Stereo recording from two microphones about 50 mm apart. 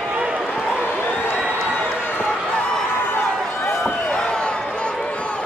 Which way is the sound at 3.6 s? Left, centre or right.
Centre.